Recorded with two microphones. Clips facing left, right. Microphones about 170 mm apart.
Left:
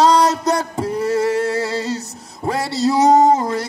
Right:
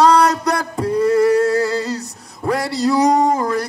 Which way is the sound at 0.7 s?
25° left (ahead or behind).